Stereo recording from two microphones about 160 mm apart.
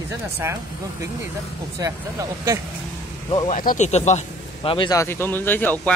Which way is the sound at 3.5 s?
55° left (ahead or behind).